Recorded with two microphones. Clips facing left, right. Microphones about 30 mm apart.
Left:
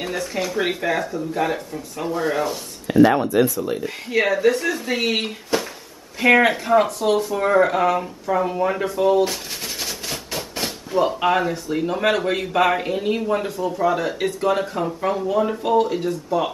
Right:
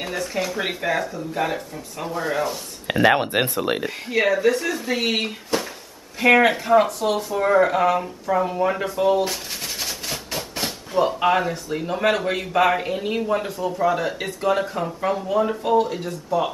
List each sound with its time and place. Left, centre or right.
0.0 s speech: centre
2.9 s speech: right
4.1 s speech: centre